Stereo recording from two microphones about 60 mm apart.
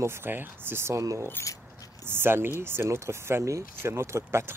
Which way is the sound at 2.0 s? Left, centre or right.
Right.